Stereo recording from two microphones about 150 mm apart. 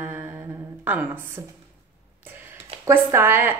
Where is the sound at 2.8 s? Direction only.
15° right (ahead or behind).